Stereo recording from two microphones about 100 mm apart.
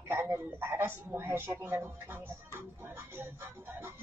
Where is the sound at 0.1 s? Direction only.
20° right (ahead or behind).